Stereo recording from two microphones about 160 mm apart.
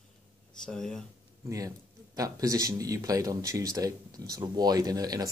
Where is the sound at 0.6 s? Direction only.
5° left (ahead or behind).